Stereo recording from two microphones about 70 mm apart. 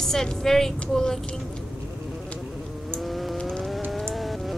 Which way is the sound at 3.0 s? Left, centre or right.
Centre.